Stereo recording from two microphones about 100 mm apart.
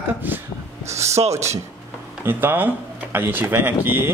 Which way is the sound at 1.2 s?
60° right (ahead or behind).